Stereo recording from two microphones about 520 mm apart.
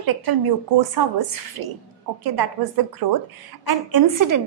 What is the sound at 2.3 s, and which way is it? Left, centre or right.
A woman's voice, right.